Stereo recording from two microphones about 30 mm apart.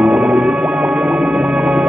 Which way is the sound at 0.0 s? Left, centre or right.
Right.